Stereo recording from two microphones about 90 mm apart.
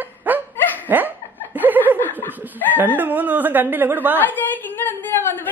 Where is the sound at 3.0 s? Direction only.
20° right (ahead or behind).